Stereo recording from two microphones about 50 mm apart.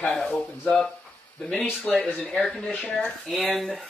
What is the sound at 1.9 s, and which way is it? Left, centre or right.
Speech, centre.